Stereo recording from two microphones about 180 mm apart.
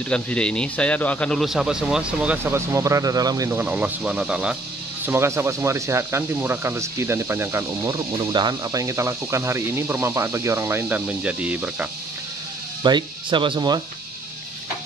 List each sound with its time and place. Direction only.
0.1 s a man's voice: 5° left (ahead or behind)
12.8 s speech: 25° right (ahead or behind)